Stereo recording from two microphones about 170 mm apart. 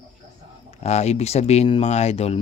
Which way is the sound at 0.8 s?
40° left (ahead or behind).